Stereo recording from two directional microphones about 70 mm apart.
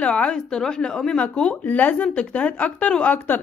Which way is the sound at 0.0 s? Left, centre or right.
Centre.